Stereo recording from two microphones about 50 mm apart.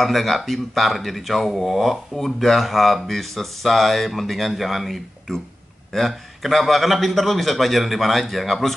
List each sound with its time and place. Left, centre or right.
0.0 s speech: centre